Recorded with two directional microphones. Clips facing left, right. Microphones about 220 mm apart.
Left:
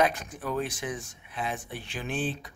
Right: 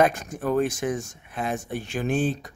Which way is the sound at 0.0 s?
45° right (ahead or behind).